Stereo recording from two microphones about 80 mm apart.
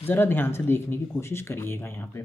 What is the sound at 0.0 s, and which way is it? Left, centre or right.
Speech, left.